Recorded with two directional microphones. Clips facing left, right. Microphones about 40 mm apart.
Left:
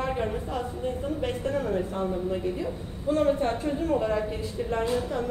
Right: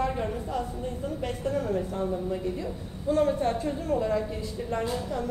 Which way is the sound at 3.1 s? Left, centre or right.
Left.